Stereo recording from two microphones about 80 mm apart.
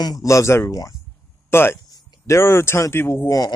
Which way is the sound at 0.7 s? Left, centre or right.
Left.